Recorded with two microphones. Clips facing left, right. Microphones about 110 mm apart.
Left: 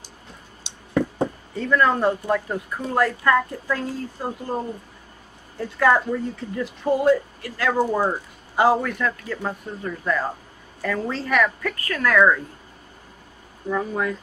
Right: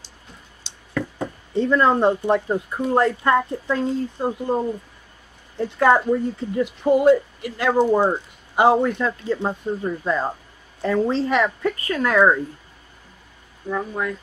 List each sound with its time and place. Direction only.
0.9 s chop: 30° left (ahead or behind)
1.5 s a woman's voice: 25° right (ahead or behind)
13.7 s speech: centre (ahead or behind)